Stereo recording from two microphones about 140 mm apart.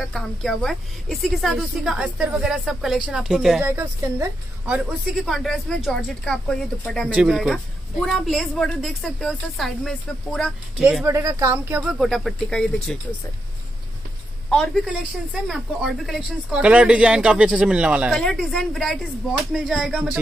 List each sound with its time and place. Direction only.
0.0 s a woman's voice: centre (ahead or behind)
3.6 s speech: 15° right (ahead or behind)
4.7 s a woman's voice: centre (ahead or behind)
11.1 s speech: 20° right (ahead or behind); by 12.9 s 5° left (ahead or behind)
14.9 s speech: 5° right (ahead or behind)
18.1 s a woman's voice: 5° left (ahead or behind)